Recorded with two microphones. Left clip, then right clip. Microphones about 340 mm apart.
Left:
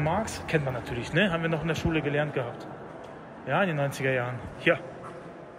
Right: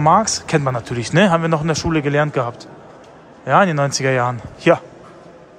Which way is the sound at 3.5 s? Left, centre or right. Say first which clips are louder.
Right 12 dB; right.